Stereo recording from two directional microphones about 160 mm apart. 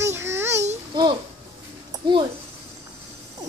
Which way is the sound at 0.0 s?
15° right (ahead or behind).